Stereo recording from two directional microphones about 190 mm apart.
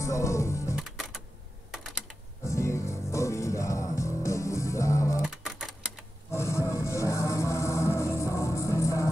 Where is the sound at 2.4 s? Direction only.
15° left (ahead or behind).